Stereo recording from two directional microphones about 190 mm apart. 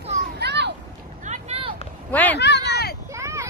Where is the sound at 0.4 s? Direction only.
65° right (ahead or behind).